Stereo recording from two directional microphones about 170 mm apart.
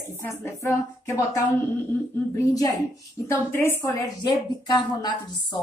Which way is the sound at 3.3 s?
15° left (ahead or behind).